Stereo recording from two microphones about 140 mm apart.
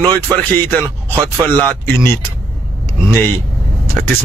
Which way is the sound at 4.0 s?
5° left (ahead or behind).